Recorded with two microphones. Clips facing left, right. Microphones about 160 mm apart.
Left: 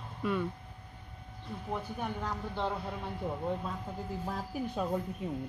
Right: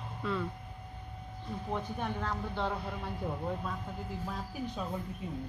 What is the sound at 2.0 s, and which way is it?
Speech, 10° left (ahead or behind).